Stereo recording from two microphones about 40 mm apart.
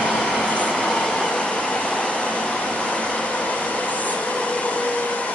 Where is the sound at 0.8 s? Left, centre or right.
Centre; by 4.1 s left.